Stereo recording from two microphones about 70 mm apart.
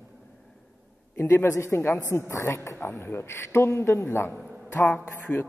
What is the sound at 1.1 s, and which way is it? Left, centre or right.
A man's voice, left.